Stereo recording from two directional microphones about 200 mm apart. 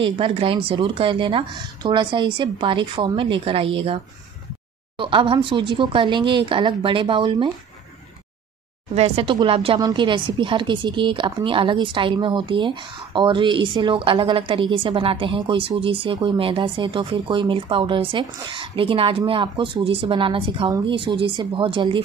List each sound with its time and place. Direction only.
0.0 s speech: 25° right (ahead or behind)
8.9 s speech: 30° right (ahead or behind)